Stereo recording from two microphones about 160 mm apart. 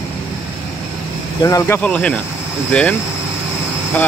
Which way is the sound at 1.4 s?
20° left (ahead or behind).